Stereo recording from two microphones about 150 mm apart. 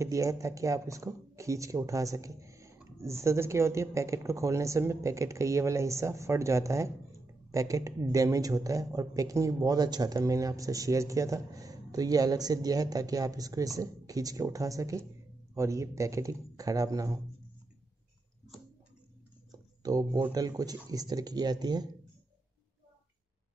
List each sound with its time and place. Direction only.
0.0 s a man's voice: 20° right (ahead or behind)
19.5 s a sound: 25° right (ahead or behind)
20.3 s a man's voice: 25° right (ahead or behind)